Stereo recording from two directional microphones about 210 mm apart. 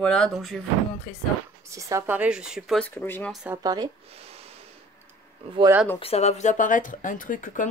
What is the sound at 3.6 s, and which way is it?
Speech, 15° right (ahead or behind).